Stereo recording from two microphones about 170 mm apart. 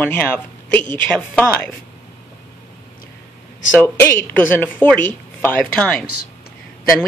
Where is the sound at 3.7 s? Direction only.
10° left (ahead or behind).